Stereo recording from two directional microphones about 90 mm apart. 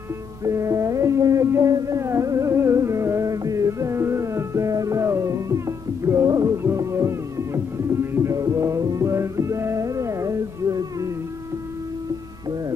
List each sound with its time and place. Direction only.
0.4 s music: 35° right (ahead or behind)